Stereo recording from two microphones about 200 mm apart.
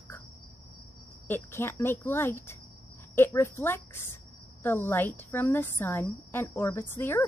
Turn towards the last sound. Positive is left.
turn(degrees=10)  # may be behind; listen again after turning